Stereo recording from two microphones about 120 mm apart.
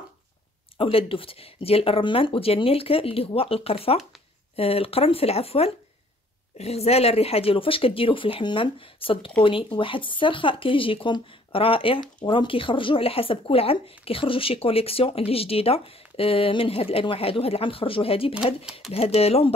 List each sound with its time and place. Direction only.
0.7 s speech: 50° left (ahead or behind)